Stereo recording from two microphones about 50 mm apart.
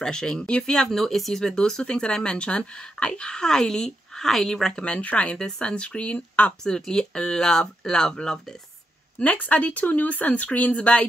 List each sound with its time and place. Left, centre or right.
0.0 s speech: centre
4.7 s speech: left
6.6 s speech: centre
9.2 s speech: left